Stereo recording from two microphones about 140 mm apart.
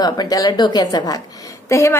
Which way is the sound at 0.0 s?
25° left (ahead or behind).